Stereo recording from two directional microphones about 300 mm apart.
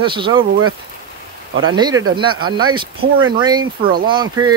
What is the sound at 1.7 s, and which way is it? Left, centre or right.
Speech, centre.